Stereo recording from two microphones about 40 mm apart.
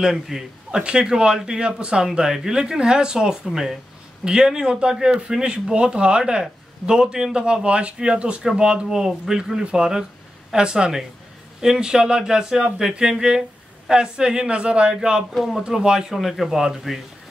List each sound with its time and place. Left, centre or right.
0.0 s speech: centre
0.7 s a man's voice: right
15.7 s speech: centre